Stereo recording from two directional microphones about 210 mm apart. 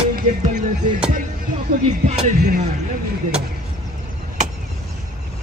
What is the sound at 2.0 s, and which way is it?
Speech, 35° right (ahead or behind).